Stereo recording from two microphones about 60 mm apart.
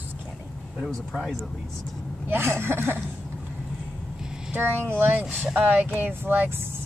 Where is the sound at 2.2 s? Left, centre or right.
Right.